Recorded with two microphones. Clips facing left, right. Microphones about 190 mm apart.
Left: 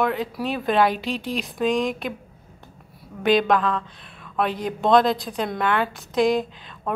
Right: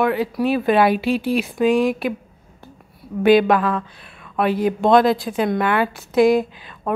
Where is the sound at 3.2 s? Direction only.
5° right (ahead or behind).